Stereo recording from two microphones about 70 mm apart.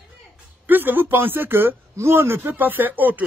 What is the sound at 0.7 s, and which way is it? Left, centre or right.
Speech, right.